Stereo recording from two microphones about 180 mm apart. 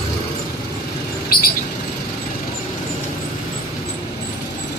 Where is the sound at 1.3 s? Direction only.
55° left (ahead or behind).